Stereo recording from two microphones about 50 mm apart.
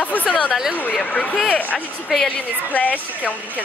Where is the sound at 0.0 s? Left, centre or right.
Left.